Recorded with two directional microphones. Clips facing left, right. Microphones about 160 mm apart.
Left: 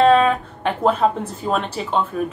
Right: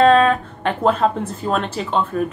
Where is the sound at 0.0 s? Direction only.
5° left (ahead or behind).